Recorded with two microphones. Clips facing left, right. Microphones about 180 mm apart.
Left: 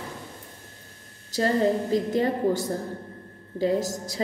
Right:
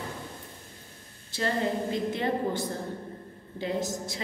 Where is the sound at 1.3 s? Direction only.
40° left (ahead or behind).